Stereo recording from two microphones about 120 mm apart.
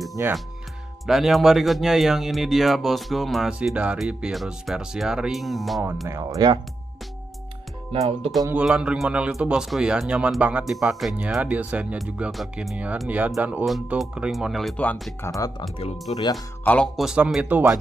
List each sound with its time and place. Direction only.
0.2 s speech: 20° right (ahead or behind)
1.0 s speech: centre (ahead or behind)
6.0 s speech: 25° right (ahead or behind)
7.9 s speech: 55° right (ahead or behind)
8.5 s a man's voice: 10° right (ahead or behind)
12.3 s speech: centre (ahead or behind)
12.7 s a man's voice: 10° right (ahead or behind)
15.2 s speech: 30° left (ahead or behind)
16.1 s speech: 60° left (ahead or behind)
16.6 s speech: 10° left (ahead or behind)
17.0 s a man's voice: 5° right (ahead or behind)